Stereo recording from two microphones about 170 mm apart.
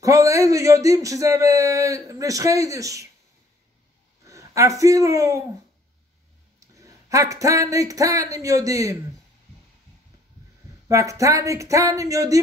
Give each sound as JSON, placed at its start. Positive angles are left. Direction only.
{"t": 0.0, "sound": "a man's voice", "side_deg": -20}
{"t": 4.2, "sound": "speech", "side_deg": -20}
{"t": 6.7, "sound": "speech", "side_deg": -20}
{"t": 10.9, "sound": "a man's voice", "side_deg": -20}